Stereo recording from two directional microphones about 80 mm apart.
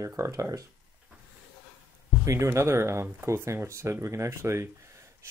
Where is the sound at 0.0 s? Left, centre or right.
Right.